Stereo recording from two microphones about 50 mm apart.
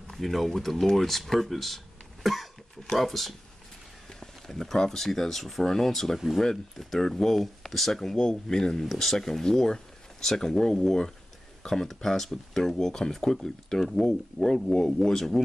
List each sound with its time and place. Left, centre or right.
0.1 s speech: centre